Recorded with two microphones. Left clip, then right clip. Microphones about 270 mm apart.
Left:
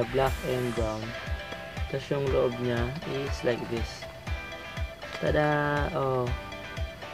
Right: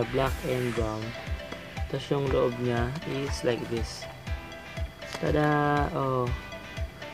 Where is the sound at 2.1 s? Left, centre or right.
Centre.